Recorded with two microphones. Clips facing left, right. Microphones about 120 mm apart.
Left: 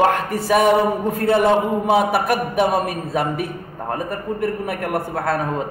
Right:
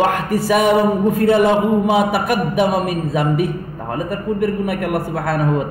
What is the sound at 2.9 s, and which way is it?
A man's voice, 40° left (ahead or behind).